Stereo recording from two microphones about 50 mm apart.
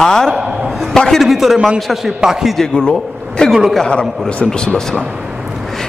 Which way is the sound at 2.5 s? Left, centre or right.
Centre.